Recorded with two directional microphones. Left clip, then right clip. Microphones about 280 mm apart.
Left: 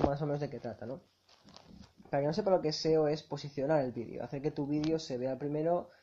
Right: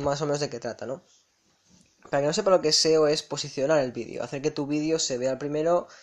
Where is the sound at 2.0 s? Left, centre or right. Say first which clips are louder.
Right 8 dB; right.